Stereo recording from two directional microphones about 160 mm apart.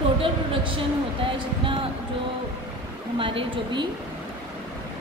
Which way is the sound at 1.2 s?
35° right (ahead or behind).